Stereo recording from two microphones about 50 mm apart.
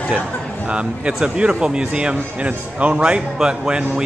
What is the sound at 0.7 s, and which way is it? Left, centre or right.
A man's voice, right.